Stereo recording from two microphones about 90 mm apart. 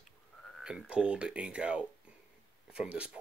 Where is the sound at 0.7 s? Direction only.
10° right (ahead or behind).